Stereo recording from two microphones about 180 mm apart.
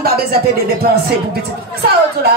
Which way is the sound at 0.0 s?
55° right (ahead or behind).